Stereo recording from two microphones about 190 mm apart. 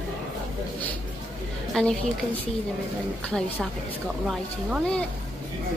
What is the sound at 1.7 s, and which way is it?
Speech, centre (ahead or behind).